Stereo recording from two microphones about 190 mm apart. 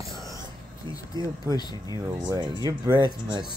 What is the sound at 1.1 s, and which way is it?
Speech, 20° right (ahead or behind).